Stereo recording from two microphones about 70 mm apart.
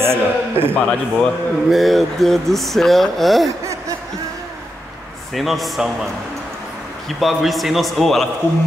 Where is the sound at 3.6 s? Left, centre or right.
Right.